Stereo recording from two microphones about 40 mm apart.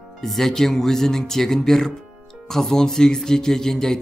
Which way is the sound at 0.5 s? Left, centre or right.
Centre.